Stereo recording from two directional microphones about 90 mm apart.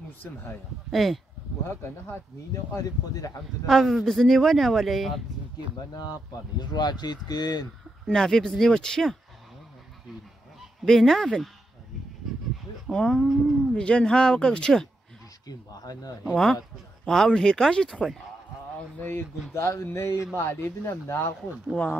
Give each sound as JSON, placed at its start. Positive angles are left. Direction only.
{"t": 0.2, "sound": "a man's voice", "side_deg": 20}
{"t": 0.8, "sound": "speech", "side_deg": 0}
{"t": 2.7, "sound": "speech", "side_deg": 40}
{"t": 3.6, "sound": "speech", "side_deg": 5}
{"t": 6.6, "sound": "speech", "side_deg": 50}
{"t": 8.1, "sound": "speech", "side_deg": 5}
{"t": 10.6, "sound": "speech", "side_deg": 0}
{"t": 12.8, "sound": "speech", "side_deg": 5}
{"t": 15.4, "sound": "speech", "side_deg": 45}
{"t": 17.0, "sound": "speech", "side_deg": 5}
{"t": 18.9, "sound": "a man's voice", "side_deg": 25}
{"t": 21.7, "sound": "speech", "side_deg": 15}